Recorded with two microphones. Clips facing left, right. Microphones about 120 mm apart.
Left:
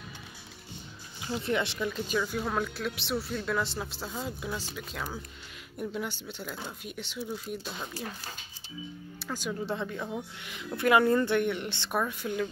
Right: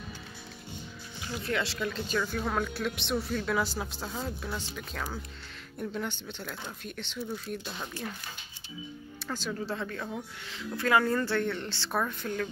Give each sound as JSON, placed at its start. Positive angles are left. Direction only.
{"t": 1.2, "sound": "speech", "side_deg": 25}
{"t": 1.9, "sound": "speech", "side_deg": 10}
{"t": 9.2, "sound": "speech", "side_deg": 10}